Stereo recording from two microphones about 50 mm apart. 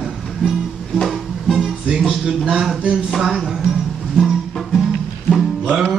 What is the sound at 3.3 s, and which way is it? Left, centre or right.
Music, centre.